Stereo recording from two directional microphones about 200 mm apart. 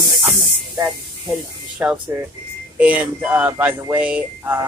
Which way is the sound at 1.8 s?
10° right (ahead or behind).